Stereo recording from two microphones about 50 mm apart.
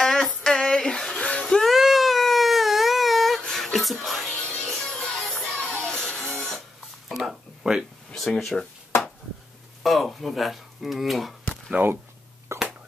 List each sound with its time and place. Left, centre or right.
0.2 s a sound: centre
1.4 s wail: centre
1.7 s a sound: centre
3.4 s music: centre
4.4 s music: centre
5.6 s children playing: centre
7.1 s a sound: centre
7.7 s speech: centre
8.1 s speech: centre
9.8 s speech: centre
11.8 s speech: right
12.5 s a sound: right